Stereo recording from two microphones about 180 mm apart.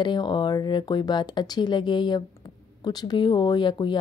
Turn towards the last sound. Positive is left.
turn(degrees=25)  # may be behind; listen again after turning